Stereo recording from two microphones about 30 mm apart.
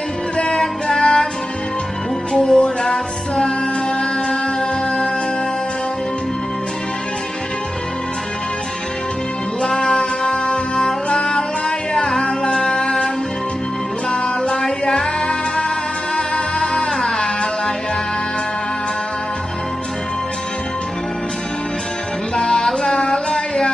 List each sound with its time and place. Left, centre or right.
0.6 s music: centre
2.3 s music: centre
9.8 s music: centre
15.0 s music: left
22.3 s music: centre
22.9 s a sound: centre